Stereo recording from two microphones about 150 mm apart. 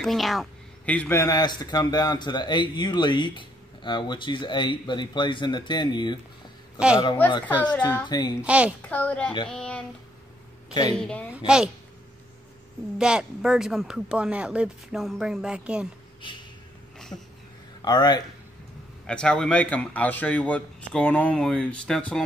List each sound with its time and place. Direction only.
0.0 s speech: centre (ahead or behind); by 6.1 s 30° left (ahead or behind)
6.8 s a woman's voice: 5° right (ahead or behind)
7.2 s speech: 10° left (ahead or behind)
8.1 s speech: 30° left (ahead or behind)
8.4 s a woman's voice: 10° right (ahead or behind)
8.8 s speech: 10° left (ahead or behind)
11.0 s speech: 10° left (ahead or behind)
11.3 s speech: 5° right (ahead or behind)
12.9 s speech: 5° right (ahead or behind)
17.1 s speech: 20° left (ahead or behind)
19.0 s speech: 5° left (ahead or behind)